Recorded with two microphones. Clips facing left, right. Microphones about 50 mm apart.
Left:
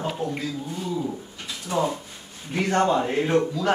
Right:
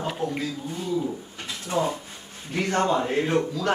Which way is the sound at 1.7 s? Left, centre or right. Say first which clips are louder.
Left 1 dB; left.